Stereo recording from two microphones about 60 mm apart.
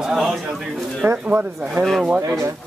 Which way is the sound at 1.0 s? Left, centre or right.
Right.